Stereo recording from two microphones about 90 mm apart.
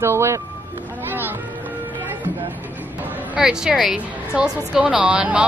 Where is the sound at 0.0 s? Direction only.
30° right (ahead or behind).